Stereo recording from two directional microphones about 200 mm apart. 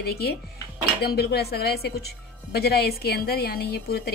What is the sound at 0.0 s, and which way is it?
A woman's voice, 50° left (ahead or behind).